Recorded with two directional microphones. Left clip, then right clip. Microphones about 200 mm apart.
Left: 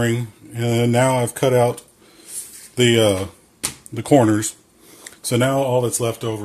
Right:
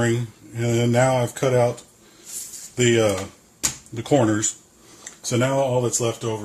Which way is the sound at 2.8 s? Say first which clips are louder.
Left 3 dB; 50° left (ahead or behind).